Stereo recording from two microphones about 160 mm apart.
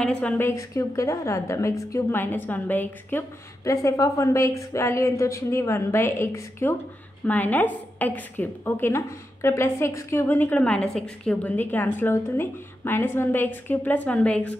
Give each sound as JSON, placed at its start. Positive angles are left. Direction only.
{"t": 0.0, "sound": "a woman's voice", "side_deg": 5}